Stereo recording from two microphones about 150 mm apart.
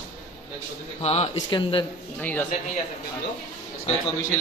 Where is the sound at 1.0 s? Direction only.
45° left (ahead or behind).